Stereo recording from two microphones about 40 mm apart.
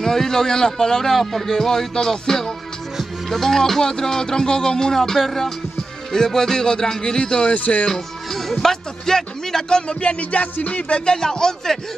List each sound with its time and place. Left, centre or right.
0.0 s speech: centre
7.5 s music: left
7.9 s speech: centre
10.0 s music: left
11.1 s speech: centre